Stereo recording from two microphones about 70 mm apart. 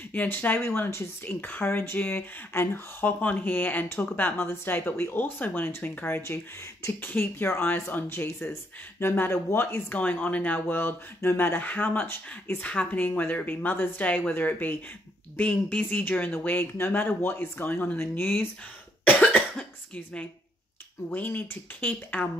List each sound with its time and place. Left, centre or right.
0.1 s speech: left
6.2 s speech: left
6.9 s speech: left
19.0 s cough: left
21.1 s speech: left